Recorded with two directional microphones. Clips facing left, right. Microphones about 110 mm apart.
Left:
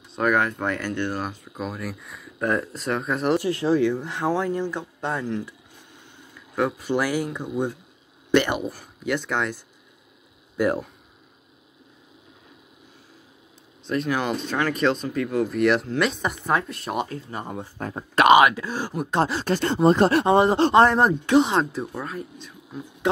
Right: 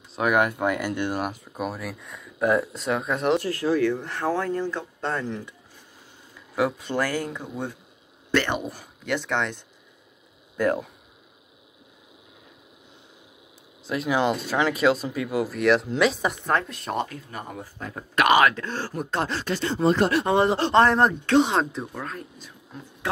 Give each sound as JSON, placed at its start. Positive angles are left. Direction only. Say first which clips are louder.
{"t": 0.1, "sound": "speech", "louder": "even", "side_deg": -10}
{"t": 3.4, "sound": "speech", "louder": "left 2 dB", "side_deg": 25}
{"t": 3.8, "sound": "speech", "louder": "left 1 dB", "side_deg": 15}
{"t": 5.2, "sound": "speech", "louder": "left 3 dB", "side_deg": 0}
{"t": 6.5, "sound": "speech", "louder": "even", "side_deg": -5}
{"t": 6.9, "sound": "speech", "louder": "left 3 dB", "side_deg": 10}
{"t": 8.5, "sound": "speech", "louder": "left 2 dB", "side_deg": 0}
{"t": 10.6, "sound": "speech", "louder": "left 1 dB", "side_deg": 10}
{"t": 13.8, "sound": "speech", "louder": "right 1 dB", "side_deg": -5}
{"t": 17.1, "sound": "speech", "louder": "left 4 dB", "side_deg": 30}
{"t": 19.4, "sound": "speech", "louder": "left 3 dB", "side_deg": 45}
{"t": 21.4, "sound": "speech", "louder": "even", "side_deg": 0}